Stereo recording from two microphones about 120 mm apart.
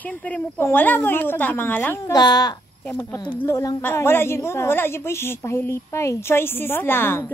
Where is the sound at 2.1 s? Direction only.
35° left (ahead or behind).